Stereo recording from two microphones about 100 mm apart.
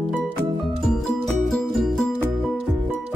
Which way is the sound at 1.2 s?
5° left (ahead or behind).